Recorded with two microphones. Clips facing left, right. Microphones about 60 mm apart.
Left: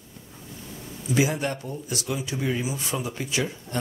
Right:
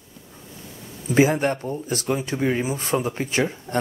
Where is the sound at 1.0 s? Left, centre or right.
Right.